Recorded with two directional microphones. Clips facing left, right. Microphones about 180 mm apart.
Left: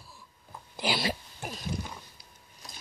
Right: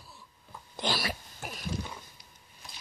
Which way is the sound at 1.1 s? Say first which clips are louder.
Left 4 dB; 35° left (ahead or behind).